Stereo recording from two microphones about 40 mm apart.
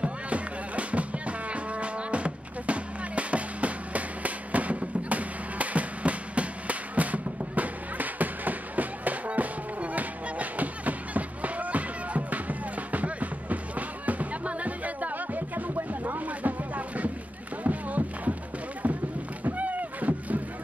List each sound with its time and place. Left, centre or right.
0.0 s music: right
15.9 s a sound: right
19.5 s rowboat: right